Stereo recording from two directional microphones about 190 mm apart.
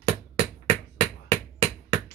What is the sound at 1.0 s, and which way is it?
Finger snapping, 35° right (ahead or behind).